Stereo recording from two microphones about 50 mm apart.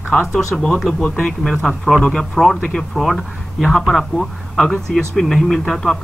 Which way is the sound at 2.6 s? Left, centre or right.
Centre.